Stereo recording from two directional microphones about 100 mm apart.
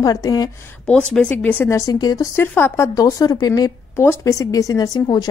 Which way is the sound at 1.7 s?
35° left (ahead or behind).